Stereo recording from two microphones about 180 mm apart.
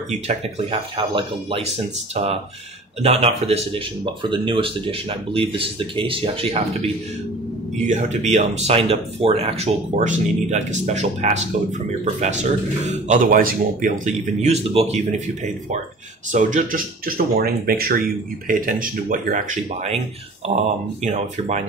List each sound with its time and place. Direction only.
0.3 s speech: 30° right (ahead or behind)
3.0 s speech: 35° right (ahead or behind)
7.7 s speech: 40° right (ahead or behind)
16.3 s speech: 45° right (ahead or behind)